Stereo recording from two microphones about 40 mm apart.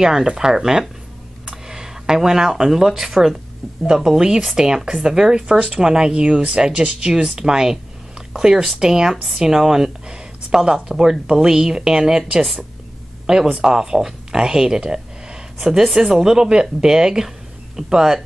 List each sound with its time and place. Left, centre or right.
0.0 s a woman's voice: centre
9.1 s a woman's voice: centre
9.4 s speech: centre
13.5 s speech: right